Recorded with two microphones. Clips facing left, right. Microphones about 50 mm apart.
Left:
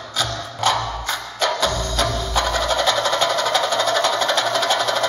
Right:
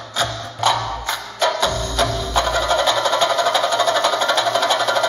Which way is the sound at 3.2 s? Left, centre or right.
Right.